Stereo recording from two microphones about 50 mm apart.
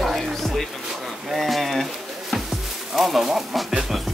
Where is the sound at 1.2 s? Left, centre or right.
Centre.